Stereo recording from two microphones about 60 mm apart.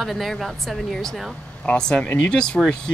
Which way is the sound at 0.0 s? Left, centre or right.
Centre.